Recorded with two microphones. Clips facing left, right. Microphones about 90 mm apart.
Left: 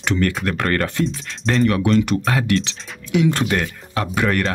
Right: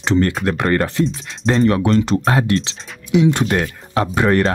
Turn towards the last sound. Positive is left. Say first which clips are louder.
# right 4 dB
turn(degrees=-30)  # may be behind; listen again after turning